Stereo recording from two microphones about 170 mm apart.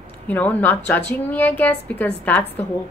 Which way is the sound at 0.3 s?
10° left (ahead or behind).